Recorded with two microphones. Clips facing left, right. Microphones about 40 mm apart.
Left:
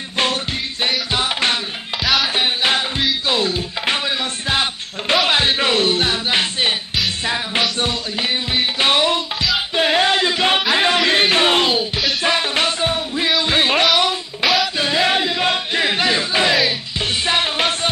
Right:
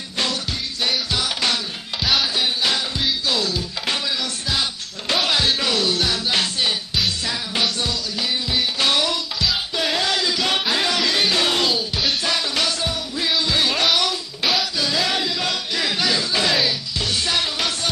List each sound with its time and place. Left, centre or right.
0.8 s music: left
7.8 s music: left
9.8 s a sound: left
10.7 s music: left
14.8 s chant: left
16.6 s music: left